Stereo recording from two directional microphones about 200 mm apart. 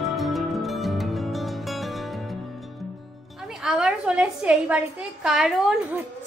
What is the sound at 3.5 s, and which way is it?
A woman's voice, centre (ahead or behind).